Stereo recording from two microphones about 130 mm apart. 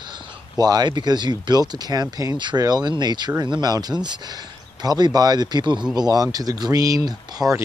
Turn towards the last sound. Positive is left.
turn(degrees=-30)  # may be behind; listen again after turning